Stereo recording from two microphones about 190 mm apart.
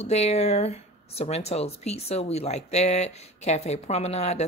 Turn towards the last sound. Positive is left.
turn(degrees=35)  # may be behind; listen again after turning